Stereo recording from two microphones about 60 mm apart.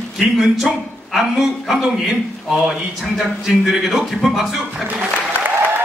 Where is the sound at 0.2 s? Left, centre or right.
Centre.